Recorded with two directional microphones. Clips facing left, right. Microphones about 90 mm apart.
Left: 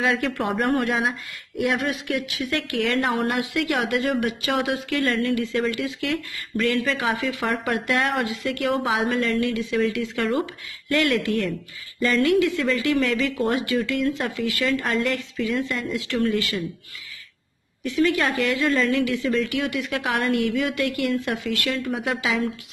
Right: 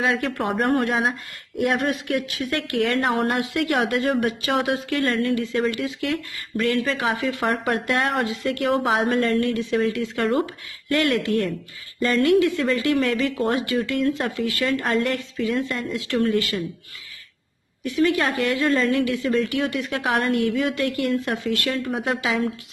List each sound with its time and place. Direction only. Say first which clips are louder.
0.0 s a woman's voice: even; 25° right (ahead or behind)
1.8 s speech: right 2 dB; 45° right (ahead or behind)
2.8 s a woman's voice: right 2 dB; 25° right (ahead or behind)
17.8 s a woman's voice: right 1 dB; 25° right (ahead or behind)